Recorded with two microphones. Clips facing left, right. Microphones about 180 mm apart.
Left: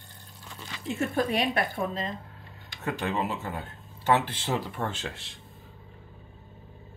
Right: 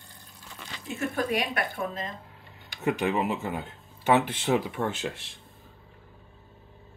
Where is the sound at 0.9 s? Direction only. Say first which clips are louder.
Left 1 dB; 30° left (ahead or behind).